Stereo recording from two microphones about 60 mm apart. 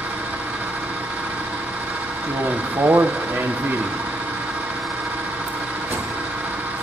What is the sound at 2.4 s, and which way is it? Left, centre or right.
Speech, right.